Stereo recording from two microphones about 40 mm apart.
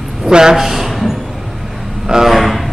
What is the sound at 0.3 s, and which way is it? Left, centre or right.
Speech, centre.